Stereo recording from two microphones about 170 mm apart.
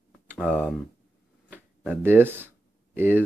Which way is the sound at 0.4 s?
5° left (ahead or behind).